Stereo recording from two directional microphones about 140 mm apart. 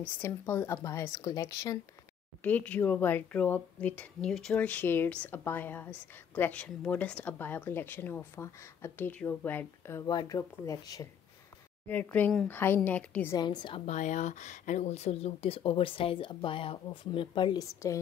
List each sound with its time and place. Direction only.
0.2 s speech: 20° left (ahead or behind)
2.4 s speech: 10° left (ahead or behind)
11.9 s speech: 10° left (ahead or behind)
13.4 s speech: 30° left (ahead or behind)
13.8 s speech: 60° left (ahead or behind); by 17.9 s 25° left (ahead or behind)